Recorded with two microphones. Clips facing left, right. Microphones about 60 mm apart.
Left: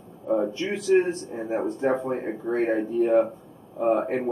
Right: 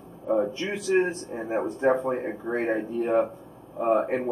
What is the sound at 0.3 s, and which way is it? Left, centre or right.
Speech, centre.